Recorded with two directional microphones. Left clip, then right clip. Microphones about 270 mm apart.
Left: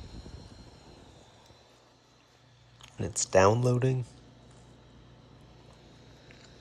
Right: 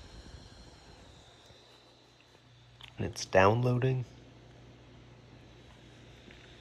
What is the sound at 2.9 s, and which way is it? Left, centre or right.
Speech, centre.